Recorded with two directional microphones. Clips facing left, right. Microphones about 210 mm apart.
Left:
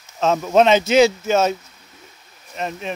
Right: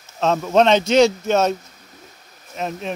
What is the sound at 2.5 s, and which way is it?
Speech, centre (ahead or behind).